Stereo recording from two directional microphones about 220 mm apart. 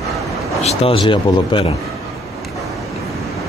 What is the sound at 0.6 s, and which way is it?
Speech, 25° left (ahead or behind).